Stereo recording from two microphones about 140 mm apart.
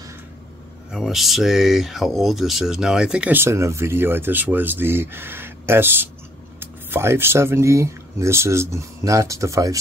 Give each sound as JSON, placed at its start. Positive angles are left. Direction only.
{"t": 0.9, "sound": "speech", "side_deg": 0}